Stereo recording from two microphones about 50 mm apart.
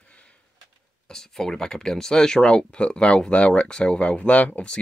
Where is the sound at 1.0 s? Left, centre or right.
Centre.